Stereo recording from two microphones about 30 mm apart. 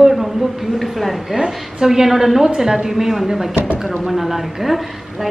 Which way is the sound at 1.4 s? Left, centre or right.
Centre.